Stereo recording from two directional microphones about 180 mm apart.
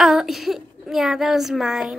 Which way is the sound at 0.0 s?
5° right (ahead or behind).